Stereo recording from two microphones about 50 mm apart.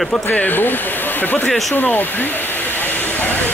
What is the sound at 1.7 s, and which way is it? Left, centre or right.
Hiss, left.